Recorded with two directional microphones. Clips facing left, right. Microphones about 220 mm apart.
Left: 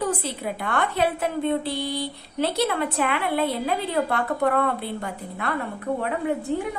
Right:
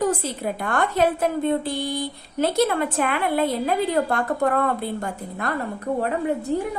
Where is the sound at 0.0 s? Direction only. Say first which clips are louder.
Right 3 dB; 45° right (ahead or behind).